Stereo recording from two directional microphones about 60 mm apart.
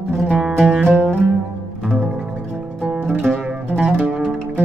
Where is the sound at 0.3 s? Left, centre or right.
Centre.